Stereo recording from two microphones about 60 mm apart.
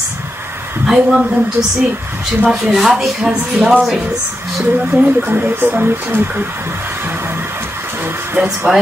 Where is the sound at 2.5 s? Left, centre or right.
Centre.